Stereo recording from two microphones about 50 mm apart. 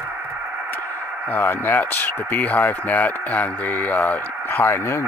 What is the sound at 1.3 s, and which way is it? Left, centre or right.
Speech, left.